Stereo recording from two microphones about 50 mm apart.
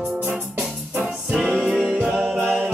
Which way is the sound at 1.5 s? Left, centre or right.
Centre.